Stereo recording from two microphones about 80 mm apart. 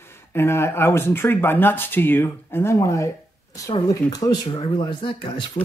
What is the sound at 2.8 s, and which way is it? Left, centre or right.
Speech, left.